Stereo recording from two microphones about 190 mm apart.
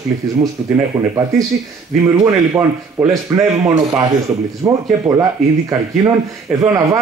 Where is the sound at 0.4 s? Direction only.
20° right (ahead or behind).